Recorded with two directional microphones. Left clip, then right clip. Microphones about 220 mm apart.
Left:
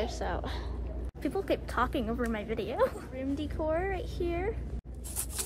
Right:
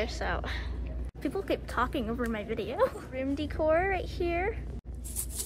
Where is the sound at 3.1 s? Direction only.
10° left (ahead or behind).